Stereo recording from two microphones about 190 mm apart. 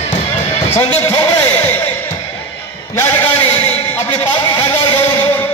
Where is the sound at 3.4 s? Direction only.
30° left (ahead or behind).